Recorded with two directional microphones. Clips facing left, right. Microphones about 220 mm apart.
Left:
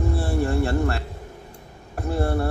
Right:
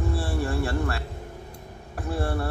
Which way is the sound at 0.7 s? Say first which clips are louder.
Left 4 dB; 40° left (ahead or behind).